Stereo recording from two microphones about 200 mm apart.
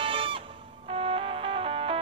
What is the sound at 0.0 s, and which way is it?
Music, 25° right (ahead or behind).